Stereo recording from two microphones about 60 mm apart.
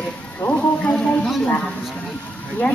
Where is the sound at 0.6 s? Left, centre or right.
Centre.